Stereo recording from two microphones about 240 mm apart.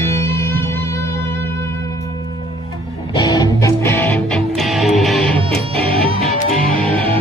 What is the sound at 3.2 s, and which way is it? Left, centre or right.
Music, centre.